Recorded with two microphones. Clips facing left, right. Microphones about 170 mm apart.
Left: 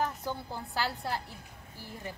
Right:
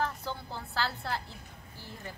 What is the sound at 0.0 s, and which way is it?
A woman's voice, 15° left (ahead or behind).